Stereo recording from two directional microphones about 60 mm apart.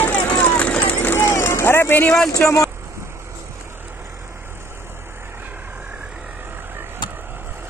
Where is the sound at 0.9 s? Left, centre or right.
Left.